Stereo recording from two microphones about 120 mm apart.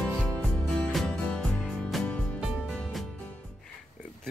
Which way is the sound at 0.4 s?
5° left (ahead or behind).